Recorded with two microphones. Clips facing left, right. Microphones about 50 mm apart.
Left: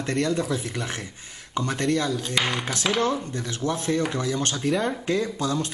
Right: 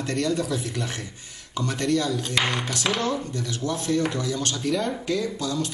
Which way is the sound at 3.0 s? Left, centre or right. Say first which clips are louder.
Left 2 dB; left.